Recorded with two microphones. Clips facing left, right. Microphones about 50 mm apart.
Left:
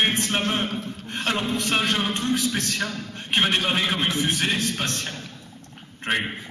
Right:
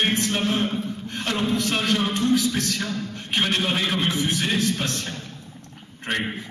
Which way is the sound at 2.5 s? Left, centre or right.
Left.